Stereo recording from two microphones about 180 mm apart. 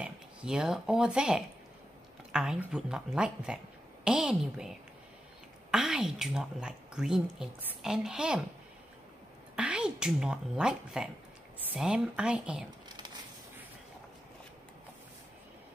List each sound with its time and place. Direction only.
0.0 s a woman's voice: 5° right (ahead or behind)
9.6 s a woman's voice: 5° right (ahead or behind)
12.8 s a sound: 25° right (ahead or behind)